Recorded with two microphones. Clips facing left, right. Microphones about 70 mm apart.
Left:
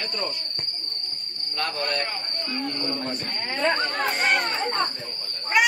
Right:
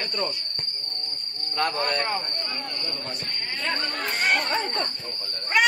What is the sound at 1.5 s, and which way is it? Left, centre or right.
A man's voice, centre.